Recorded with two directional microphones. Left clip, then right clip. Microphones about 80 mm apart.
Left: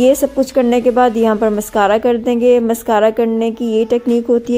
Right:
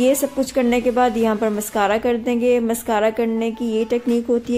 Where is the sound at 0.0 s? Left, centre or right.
Left.